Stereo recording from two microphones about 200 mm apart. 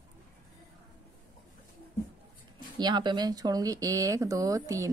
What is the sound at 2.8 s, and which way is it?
Speech, 20° right (ahead or behind).